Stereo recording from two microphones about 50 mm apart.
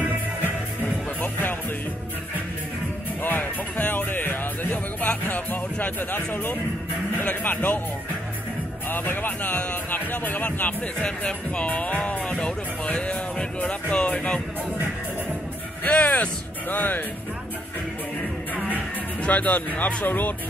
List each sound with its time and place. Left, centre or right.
1.2 s music: left
3.2 s music: left
7.2 s speech: left
8.8 s speech: left
9.8 s speech: left
15.8 s speech: left
16.6 s speech: left
19.2 s speech: left